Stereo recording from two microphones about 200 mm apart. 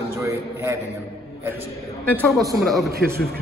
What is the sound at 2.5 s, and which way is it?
Speech, centre (ahead or behind).